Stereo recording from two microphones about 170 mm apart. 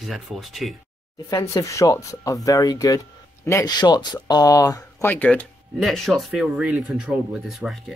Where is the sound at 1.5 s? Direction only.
20° left (ahead or behind).